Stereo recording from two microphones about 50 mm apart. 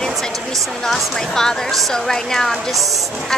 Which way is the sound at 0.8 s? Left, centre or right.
Centre.